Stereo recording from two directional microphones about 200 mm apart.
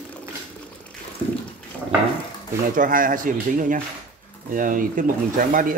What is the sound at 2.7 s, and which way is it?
Speech, 45° right (ahead or behind).